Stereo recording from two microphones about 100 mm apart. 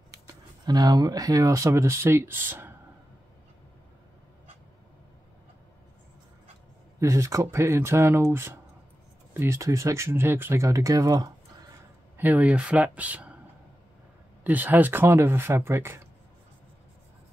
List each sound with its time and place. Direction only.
0.7 s speech: 45° right (ahead or behind); by 2.7 s 20° right (ahead or behind)
7.0 s speech: 30° right (ahead or behind)
12.2 s speech: 15° right (ahead or behind)
14.4 s speech: 15° right (ahead or behind)